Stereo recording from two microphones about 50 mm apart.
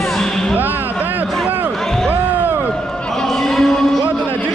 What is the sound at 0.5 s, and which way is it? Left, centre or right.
Music, right.